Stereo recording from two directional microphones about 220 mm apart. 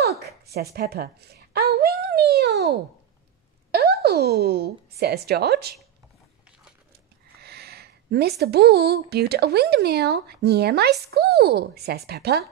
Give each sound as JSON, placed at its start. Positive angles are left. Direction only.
{"t": 0.2, "sound": "a sound", "side_deg": -45}
{"t": 3.7, "sound": "speech", "side_deg": -45}
{"t": 7.4, "sound": "speech", "side_deg": -45}